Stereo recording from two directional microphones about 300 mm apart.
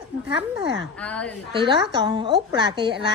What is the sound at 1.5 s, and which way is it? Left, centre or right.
A woman's voice, centre.